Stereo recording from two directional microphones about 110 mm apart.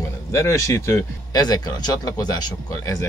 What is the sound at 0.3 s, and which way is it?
Speech, 25° left (ahead or behind).